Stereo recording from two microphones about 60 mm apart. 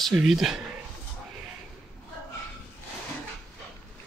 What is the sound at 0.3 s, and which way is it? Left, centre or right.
Speech, centre.